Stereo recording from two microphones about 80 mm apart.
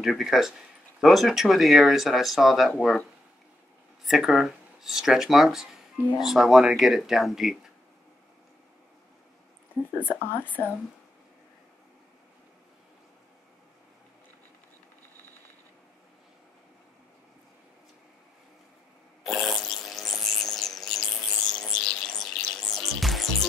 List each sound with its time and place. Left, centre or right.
0.0 s speech: centre
4.0 s speech: centre
10.0 s speech: left
19.2 s a sound: centre